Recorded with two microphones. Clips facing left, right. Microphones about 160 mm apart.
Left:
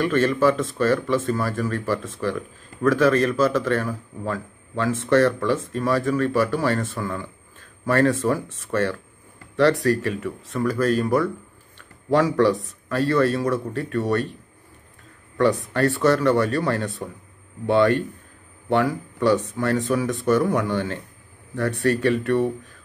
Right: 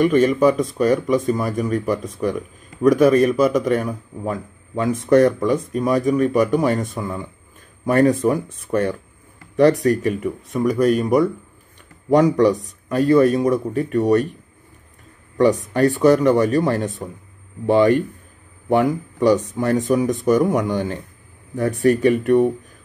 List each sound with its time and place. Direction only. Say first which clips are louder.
0.0 s a man's voice: right 4 dB; 15° right (ahead or behind)
9.8 s a man's voice: right 3 dB; 15° right (ahead or behind)
15.3 s a man's voice: right 4 dB; 20° right (ahead or behind)